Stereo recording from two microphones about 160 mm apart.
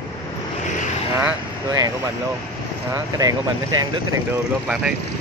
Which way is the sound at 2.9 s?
20° right (ahead or behind).